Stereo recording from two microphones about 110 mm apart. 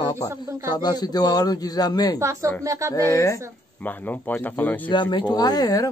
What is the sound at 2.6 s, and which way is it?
Speech, 30° right (ahead or behind).